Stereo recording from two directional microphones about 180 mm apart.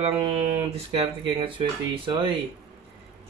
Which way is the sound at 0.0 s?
30° right (ahead or behind).